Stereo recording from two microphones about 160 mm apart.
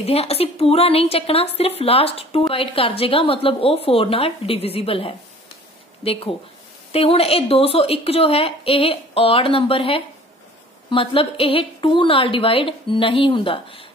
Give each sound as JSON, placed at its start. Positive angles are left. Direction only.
{"t": 0.0, "sound": "a woman's voice", "side_deg": 40}
{"t": 6.9, "sound": "a woman's voice", "side_deg": 40}